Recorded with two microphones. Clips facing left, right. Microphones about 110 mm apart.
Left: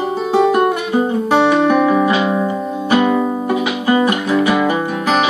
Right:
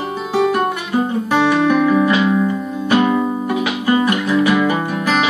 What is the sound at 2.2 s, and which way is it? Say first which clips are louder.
Music: right 1 dB; 25° left (ahead or behind).